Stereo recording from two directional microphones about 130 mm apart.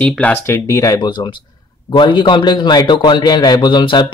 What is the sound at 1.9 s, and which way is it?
A man's voice, 40° left (ahead or behind).